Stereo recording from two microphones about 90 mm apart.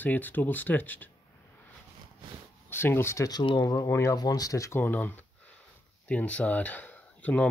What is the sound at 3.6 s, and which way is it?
Speech, 35° left (ahead or behind).